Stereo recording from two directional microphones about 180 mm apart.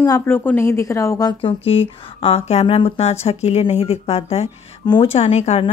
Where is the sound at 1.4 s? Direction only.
30° left (ahead or behind).